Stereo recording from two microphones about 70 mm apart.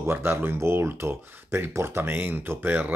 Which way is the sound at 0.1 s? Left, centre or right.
Right.